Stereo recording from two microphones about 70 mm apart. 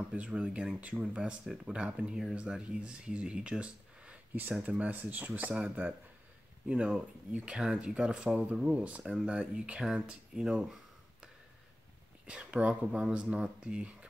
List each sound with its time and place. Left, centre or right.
0.1 s speech: centre
12.3 s speech: centre